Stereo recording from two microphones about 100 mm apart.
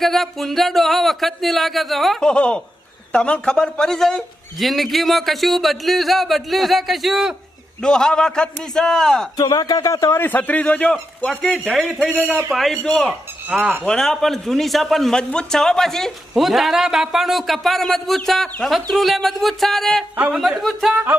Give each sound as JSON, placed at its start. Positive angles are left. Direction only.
{"t": 0.0, "sound": "a man's voice", "side_deg": 0}
{"t": 9.4, "sound": "a man's voice", "side_deg": 40}